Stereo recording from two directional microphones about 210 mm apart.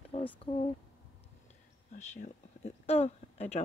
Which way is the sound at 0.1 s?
30° left (ahead or behind).